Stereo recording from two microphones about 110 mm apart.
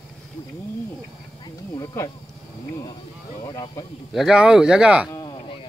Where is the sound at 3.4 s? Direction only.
40° left (ahead or behind).